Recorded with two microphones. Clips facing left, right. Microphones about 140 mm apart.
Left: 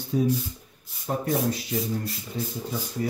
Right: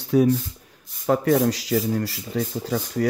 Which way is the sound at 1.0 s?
90° right.